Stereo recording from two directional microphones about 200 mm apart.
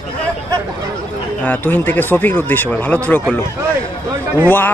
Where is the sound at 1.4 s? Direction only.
10° left (ahead or behind).